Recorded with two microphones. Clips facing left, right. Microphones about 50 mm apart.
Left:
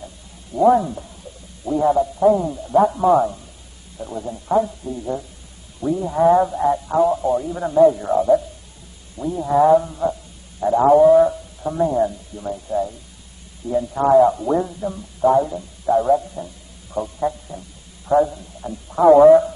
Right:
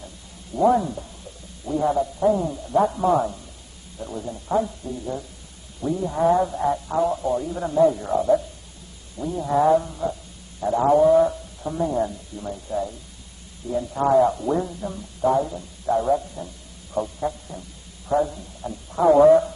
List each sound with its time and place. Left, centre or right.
0.6 s a man's voice: centre
11.6 s speech: centre
11.9 s a man's voice: centre
16.9 s a sound: centre
18.0 s a man's voice: centre